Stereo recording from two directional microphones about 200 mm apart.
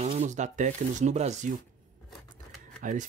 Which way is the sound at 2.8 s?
40° right (ahead or behind).